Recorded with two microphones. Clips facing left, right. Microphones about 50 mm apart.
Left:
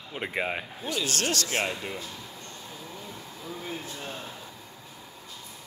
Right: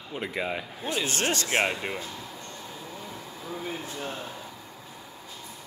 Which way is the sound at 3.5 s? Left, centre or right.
Centre.